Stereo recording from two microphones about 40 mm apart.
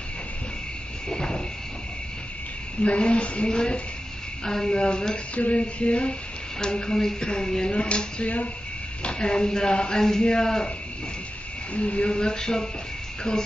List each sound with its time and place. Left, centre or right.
1.0 s cricket: centre
2.8 s speech: left
5.3 s a sound: left
6.6 s speech: left
11.7 s speech: left